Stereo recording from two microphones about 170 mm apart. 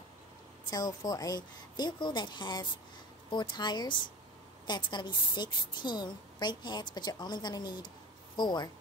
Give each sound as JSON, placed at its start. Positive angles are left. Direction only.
{"t": 0.7, "sound": "a woman's voice", "side_deg": 20}